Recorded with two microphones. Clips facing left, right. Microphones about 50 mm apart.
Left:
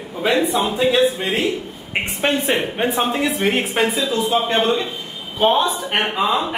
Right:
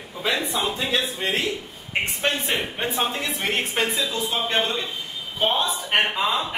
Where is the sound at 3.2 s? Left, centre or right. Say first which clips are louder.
Left 7 dB; centre.